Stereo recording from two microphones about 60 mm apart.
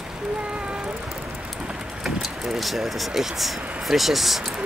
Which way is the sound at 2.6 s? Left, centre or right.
Centre.